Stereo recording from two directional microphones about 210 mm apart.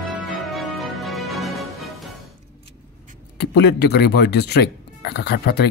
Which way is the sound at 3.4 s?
55° left (ahead or behind).